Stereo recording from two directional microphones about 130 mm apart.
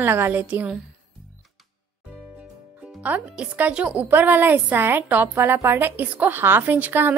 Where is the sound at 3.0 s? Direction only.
10° right (ahead or behind).